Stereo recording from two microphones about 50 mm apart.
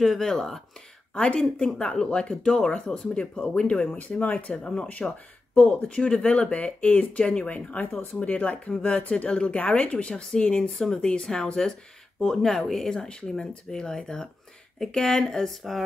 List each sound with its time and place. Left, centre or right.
0.0 s speech: centre; by 4.7 s left
5.0 s speech: centre